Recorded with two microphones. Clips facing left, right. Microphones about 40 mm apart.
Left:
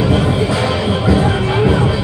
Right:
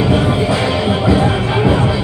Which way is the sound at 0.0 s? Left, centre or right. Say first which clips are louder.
Right 1 dB; centre.